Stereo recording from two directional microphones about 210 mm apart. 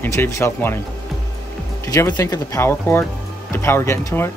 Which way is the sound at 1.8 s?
15° left (ahead or behind).